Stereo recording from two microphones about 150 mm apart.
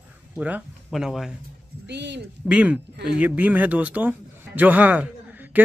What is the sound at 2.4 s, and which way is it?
Speech, 10° right (ahead or behind).